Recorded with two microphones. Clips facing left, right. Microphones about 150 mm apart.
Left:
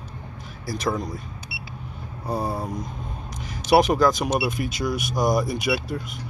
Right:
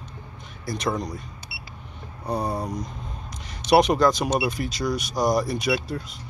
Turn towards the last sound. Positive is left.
turn(degrees=0)  # may be behind; listen again after turning